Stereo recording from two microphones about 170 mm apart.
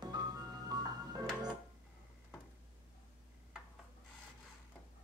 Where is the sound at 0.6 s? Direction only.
25° right (ahead or behind).